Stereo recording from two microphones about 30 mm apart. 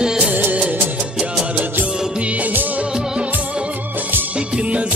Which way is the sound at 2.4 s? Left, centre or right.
Right.